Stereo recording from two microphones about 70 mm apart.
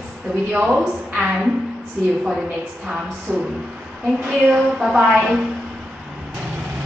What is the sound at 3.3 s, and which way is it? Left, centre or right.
Speech, centre.